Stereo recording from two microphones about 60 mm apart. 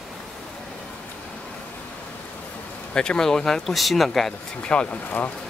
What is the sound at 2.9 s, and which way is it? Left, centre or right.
Speech, centre.